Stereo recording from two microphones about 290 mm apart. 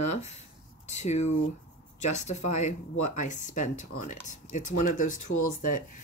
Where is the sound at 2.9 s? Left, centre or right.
Left.